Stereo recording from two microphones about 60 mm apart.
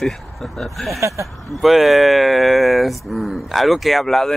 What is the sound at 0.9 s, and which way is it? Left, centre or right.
Speech, right.